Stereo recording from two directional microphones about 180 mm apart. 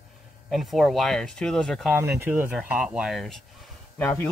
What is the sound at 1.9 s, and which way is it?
Speech, 15° right (ahead or behind).